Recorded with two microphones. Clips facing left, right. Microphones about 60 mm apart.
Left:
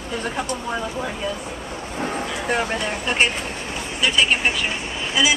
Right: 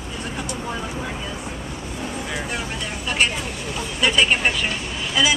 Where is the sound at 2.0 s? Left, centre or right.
Left.